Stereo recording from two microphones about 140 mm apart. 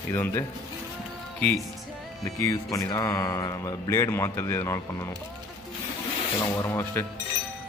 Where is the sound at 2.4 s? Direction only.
25° left (ahead or behind).